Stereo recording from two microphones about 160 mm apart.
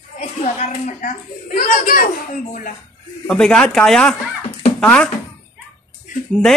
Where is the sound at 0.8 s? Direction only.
50° left (ahead or behind).